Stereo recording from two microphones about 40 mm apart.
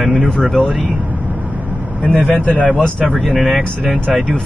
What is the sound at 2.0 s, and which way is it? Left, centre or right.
Speech, right.